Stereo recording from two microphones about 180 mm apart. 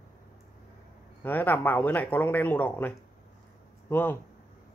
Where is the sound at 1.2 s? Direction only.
10° left (ahead or behind).